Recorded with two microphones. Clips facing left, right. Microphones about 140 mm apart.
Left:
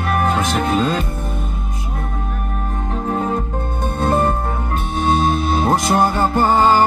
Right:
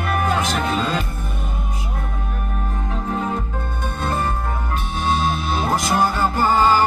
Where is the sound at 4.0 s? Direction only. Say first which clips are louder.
Left 7 dB; 50° left (ahead or behind).